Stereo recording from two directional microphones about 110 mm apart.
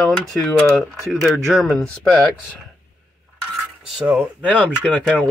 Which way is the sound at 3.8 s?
5° right (ahead or behind).